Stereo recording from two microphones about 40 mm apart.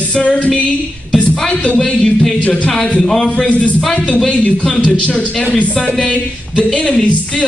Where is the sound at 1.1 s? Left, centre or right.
Left.